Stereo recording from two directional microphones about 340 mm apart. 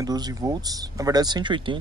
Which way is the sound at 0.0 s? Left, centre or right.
Centre.